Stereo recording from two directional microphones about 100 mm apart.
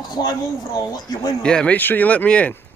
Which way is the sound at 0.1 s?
40° left (ahead or behind).